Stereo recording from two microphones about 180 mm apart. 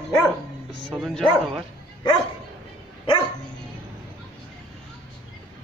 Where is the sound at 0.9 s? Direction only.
5° left (ahead or behind).